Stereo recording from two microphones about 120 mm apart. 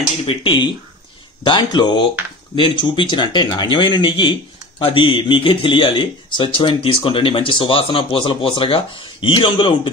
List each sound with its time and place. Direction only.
0.3 s speech: 45° left (ahead or behind)